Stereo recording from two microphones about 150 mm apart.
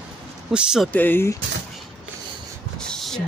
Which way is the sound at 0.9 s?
15° left (ahead or behind).